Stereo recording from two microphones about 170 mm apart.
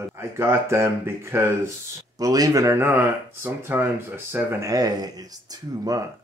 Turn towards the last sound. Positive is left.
turn(degrees=-20)  # may be behind; listen again after turning